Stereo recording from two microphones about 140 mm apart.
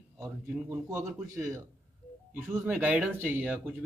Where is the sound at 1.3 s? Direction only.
20° right (ahead or behind).